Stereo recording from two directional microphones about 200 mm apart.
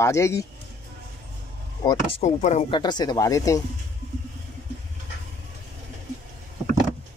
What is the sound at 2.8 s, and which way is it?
Speech, 20° left (ahead or behind).